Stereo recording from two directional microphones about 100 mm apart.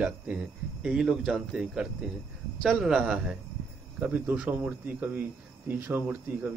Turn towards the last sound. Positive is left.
turn(degrees=-20)  # may be behind; listen again after turning